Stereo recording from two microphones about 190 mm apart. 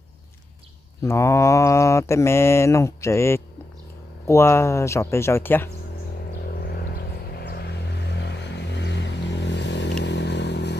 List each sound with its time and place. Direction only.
1.0 s mantra: 15° left (ahead or behind)
6.6 s vehicle: 55° left (ahead or behind)